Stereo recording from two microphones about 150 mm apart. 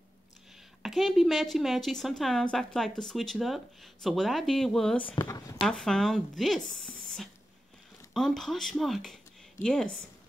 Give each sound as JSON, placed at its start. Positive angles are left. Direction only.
{"t": 0.8, "sound": "speech", "side_deg": 0}
{"t": 5.1, "sound": "speech", "side_deg": 25}
{"t": 5.6, "sound": "speech", "side_deg": 0}
{"t": 8.1, "sound": "speech", "side_deg": 0}